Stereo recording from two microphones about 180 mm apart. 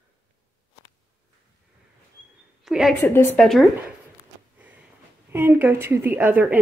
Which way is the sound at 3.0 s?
15° left (ahead or behind).